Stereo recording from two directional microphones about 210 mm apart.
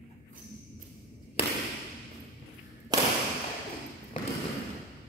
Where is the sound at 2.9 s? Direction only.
20° right (ahead or behind).